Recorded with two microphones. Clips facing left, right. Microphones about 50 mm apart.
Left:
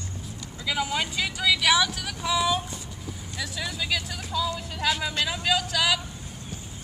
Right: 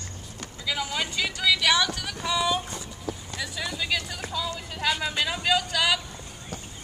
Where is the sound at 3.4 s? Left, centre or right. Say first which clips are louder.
Even; centre.